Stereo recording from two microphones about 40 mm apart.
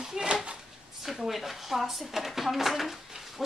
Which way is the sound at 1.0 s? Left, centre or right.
Centre.